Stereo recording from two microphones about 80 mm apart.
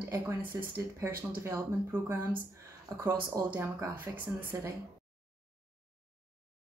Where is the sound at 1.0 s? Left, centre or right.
Right.